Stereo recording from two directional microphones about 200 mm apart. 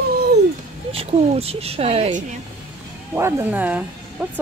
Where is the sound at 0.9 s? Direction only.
30° right (ahead or behind).